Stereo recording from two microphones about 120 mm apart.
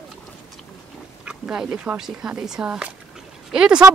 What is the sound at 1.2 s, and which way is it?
Speech, 5° right (ahead or behind).